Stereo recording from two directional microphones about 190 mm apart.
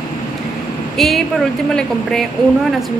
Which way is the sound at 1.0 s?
Centre (ahead or behind).